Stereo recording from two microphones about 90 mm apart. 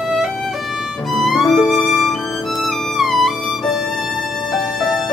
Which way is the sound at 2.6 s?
Centre (ahead or behind).